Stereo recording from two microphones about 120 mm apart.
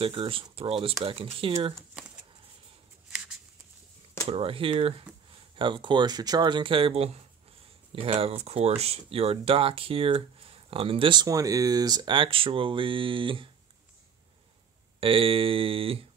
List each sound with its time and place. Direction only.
0.0 s speech: 50° right (ahead or behind)
2.0 s a sound: 5° right (ahead or behind)
4.3 s speech: 50° right (ahead or behind)
11.2 s speech: 30° right (ahead or behind); by 13.5 s 45° right (ahead or behind)
15.0 s speech: 50° right (ahead or behind)